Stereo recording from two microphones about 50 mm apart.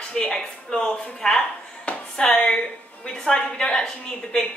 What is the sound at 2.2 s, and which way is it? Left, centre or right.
A woman's voice, centre.